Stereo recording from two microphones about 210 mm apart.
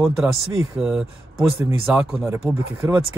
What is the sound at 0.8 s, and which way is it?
Speech, centre (ahead or behind).